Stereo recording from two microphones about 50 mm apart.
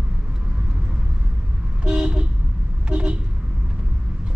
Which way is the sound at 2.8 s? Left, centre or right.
Centre.